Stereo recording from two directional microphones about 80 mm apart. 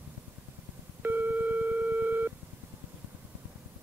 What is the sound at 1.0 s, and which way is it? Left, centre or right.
Busy signal, right.